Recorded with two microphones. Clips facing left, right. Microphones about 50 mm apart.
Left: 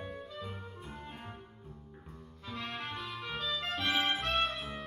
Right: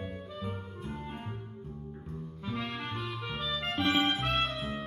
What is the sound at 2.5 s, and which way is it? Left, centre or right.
Music, centre.